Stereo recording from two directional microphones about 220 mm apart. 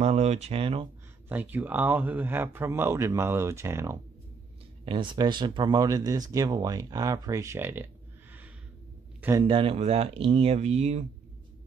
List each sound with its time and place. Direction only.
0.0 s speech: 30° right (ahead or behind)
1.3 s speech: 10° right (ahead or behind)
9.4 s speech: 25° right (ahead or behind)